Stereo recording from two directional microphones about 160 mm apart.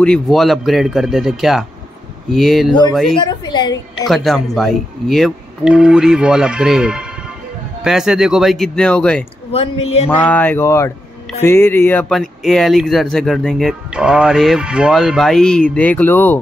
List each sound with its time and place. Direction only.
0.0 s speech: 5° left (ahead or behind)
3.2 s a woman's voice: 25° left (ahead or behind)
4.1 s speech: centre (ahead or behind)
9.5 s speech: 40° left (ahead or behind)
10.0 s speech: 10° left (ahead or behind)